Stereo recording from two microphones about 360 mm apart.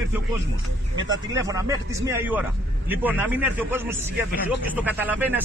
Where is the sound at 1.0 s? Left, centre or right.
Centre.